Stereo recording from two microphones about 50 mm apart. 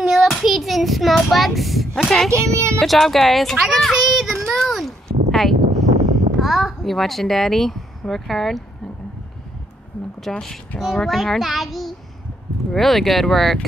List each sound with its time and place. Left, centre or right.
0.0 s child singing: centre
0.4 s a child's voice: centre
2.3 s speech: right
2.8 s speech: centre
3.7 s child singing: centre
4.6 s a sound: centre
6.4 s a child's voice: centre
10.3 s speech: centre